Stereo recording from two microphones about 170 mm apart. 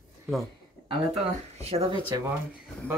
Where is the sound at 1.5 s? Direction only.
35° right (ahead or behind).